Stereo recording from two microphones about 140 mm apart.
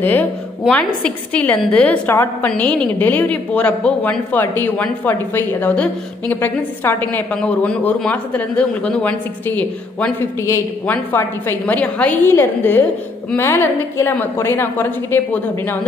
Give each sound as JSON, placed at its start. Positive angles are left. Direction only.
{"t": 0.0, "sound": "a woman's voice", "side_deg": 15}